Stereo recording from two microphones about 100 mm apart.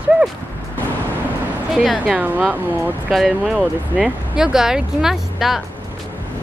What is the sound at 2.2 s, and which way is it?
Speech, 15° right (ahead or behind).